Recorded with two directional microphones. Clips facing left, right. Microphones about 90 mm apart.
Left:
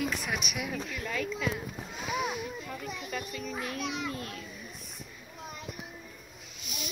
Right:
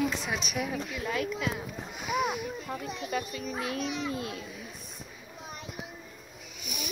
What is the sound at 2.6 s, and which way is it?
Speech, 25° right (ahead or behind).